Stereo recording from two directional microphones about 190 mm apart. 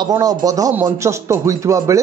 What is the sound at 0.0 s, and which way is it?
A man's voice, 20° right (ahead or behind).